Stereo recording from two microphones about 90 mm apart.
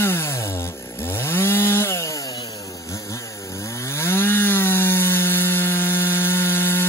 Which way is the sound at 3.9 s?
30° left (ahead or behind).